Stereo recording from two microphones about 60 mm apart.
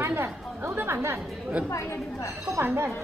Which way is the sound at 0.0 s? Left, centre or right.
Right.